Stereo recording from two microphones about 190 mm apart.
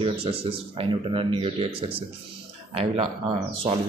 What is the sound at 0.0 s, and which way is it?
A man's voice, 30° right (ahead or behind).